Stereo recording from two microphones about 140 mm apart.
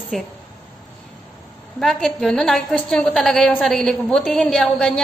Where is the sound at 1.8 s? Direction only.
5° left (ahead or behind).